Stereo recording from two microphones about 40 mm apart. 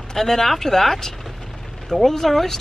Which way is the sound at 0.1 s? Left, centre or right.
Centre.